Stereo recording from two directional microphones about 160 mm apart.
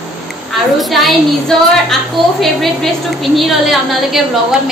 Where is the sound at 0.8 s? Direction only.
Centre (ahead or behind).